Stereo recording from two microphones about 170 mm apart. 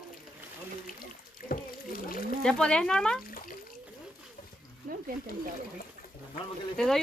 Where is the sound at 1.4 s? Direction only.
Centre (ahead or behind).